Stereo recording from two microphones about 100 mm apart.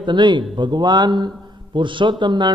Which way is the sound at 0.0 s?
50° right (ahead or behind).